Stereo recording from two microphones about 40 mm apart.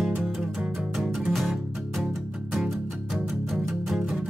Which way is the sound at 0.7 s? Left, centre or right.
Centre.